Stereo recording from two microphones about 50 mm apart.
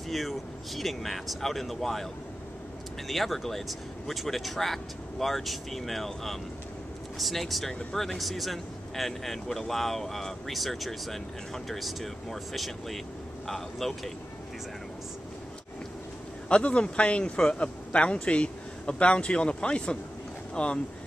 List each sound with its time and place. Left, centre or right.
0.1 s speech: centre
3.1 s speech: centre
16.4 s a man's voice: left